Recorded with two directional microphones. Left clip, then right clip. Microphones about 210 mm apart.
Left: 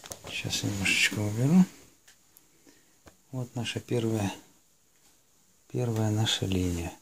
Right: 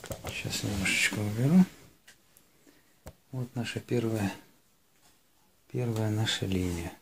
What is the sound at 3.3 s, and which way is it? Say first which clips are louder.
Speech: left 2 dB; 30° left (ahead or behind).